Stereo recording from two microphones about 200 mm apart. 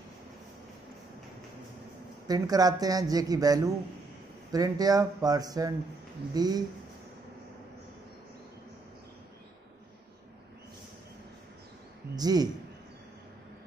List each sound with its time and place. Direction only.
2.2 s a man's voice: 20° right (ahead or behind)
12.2 s a man's voice: 20° right (ahead or behind)